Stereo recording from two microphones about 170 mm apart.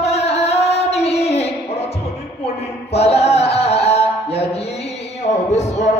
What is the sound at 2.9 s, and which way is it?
Music, 40° left (ahead or behind).